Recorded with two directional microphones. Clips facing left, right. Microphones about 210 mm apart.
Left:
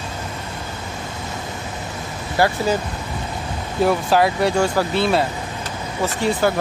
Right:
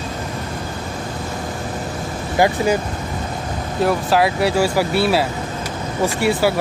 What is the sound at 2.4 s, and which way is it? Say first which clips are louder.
Speech: right 2 dB; 15° right (ahead or behind).